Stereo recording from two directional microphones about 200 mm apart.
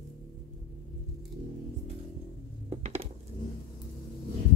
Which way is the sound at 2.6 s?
30° right (ahead or behind).